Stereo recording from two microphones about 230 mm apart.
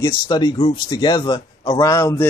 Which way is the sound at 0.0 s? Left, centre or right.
Centre.